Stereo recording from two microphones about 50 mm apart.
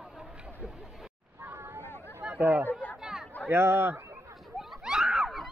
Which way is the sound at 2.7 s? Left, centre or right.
Left.